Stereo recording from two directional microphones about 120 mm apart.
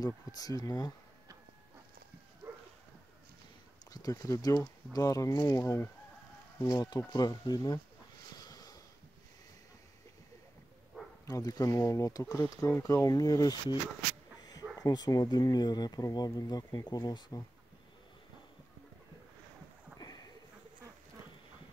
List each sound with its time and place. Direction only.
0.0 s speech: 30° left (ahead or behind)
3.8 s speech: 30° left (ahead or behind)
8.4 s a sound: 30° left (ahead or behind)
11.2 s speech: 30° left (ahead or behind)
14.8 s speech: 35° left (ahead or behind)
20.0 s a sound: 35° left (ahead or behind)